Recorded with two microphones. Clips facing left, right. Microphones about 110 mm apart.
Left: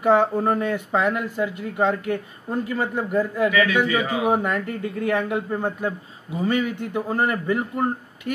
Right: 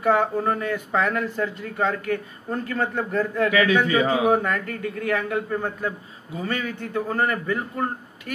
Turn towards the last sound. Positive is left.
turn(degrees=20)  # may be behind; listen again after turning